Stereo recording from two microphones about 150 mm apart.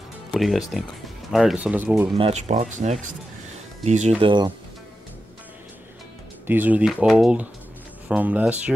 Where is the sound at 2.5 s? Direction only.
55° right (ahead or behind).